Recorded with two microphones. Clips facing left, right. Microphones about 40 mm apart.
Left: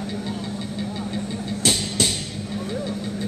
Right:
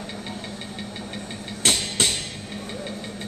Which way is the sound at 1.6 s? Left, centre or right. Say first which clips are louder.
Even; right.